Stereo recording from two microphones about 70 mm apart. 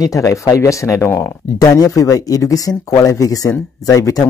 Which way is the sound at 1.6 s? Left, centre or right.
Left.